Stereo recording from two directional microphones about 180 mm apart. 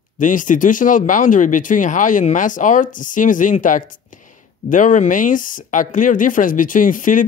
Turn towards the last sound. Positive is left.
turn(degrees=45)  # may be behind; listen again after turning